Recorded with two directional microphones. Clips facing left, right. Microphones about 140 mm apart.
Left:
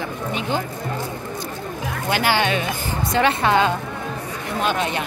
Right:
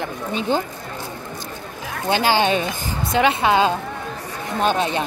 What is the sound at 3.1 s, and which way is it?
Speech, 15° right (ahead or behind).